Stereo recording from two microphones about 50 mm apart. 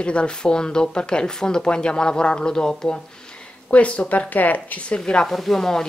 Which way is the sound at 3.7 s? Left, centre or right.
Left.